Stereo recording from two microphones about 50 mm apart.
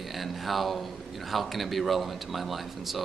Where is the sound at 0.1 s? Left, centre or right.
Centre.